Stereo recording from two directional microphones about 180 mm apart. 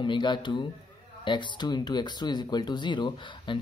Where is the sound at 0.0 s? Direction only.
25° left (ahead or behind).